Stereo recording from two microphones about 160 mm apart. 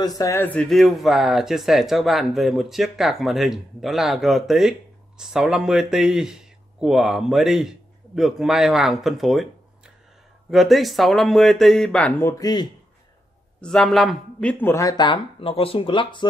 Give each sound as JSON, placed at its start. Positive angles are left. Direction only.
{"t": 0.0, "sound": "speech", "side_deg": 20}
{"t": 13.6, "sound": "speech", "side_deg": 5}